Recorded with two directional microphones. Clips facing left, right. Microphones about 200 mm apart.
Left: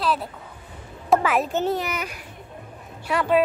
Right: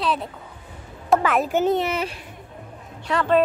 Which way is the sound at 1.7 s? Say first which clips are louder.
Right 5 dB; 25° right (ahead or behind).